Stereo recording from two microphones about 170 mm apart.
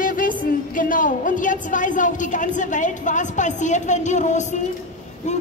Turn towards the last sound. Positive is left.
turn(degrees=45)  # may be behind; listen again after turning